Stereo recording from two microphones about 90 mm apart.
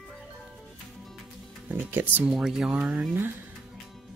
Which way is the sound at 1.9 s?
20° right (ahead or behind).